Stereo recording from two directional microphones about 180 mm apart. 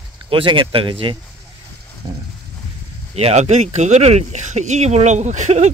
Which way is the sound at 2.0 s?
25° right (ahead or behind).